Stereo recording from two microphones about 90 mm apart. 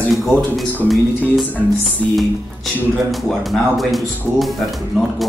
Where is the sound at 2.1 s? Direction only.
Centre (ahead or behind).